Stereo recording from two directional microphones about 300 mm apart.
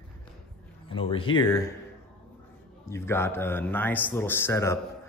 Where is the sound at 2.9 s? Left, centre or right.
Centre.